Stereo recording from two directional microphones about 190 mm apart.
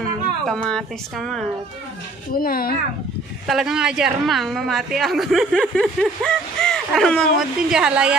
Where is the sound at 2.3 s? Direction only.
50° left (ahead or behind).